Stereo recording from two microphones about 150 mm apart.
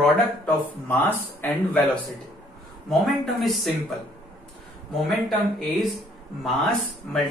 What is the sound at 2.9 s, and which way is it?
Speech, centre (ahead or behind).